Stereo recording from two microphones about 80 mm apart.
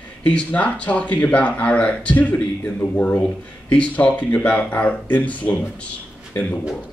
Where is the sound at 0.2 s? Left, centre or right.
Centre.